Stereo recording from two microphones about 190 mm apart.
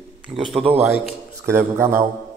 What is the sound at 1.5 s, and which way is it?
Speech, 15° right (ahead or behind).